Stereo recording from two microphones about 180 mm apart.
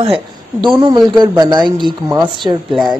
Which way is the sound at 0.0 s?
30° right (ahead or behind).